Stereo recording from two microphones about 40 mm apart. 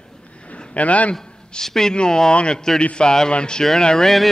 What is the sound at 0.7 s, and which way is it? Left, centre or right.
Speech, left.